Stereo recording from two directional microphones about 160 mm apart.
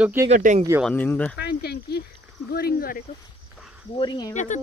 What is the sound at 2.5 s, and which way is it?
Speech, 75° left (ahead or behind).